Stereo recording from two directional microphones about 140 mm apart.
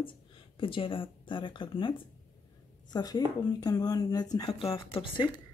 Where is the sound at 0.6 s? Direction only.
40° left (ahead or behind).